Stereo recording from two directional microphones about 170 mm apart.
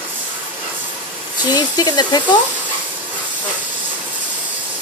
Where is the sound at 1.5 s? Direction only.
25° left (ahead or behind).